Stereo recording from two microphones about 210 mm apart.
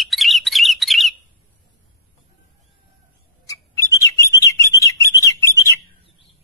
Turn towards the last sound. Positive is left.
turn(degrees=15)  # may be behind; listen again after turning